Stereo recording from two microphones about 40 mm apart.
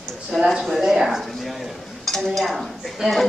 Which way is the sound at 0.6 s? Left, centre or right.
Centre.